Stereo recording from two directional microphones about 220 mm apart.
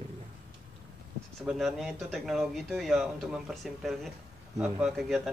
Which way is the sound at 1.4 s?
Centre (ahead or behind).